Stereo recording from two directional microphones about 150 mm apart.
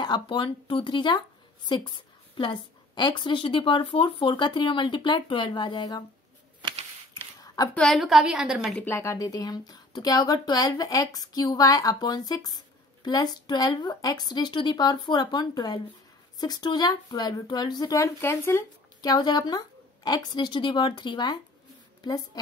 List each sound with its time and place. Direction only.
0.0 s a woman's voice: 30° left (ahead or behind)
7.3 s a sound: 25° left (ahead or behind)
7.7 s a woman's voice: centre (ahead or behind)
8.8 s speech: 20° left (ahead or behind)
18.9 s speech: 25° left (ahead or behind)